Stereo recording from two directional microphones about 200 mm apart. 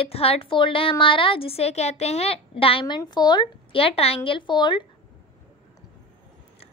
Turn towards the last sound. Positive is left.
turn(degrees=25)  # may be behind; listen again after turning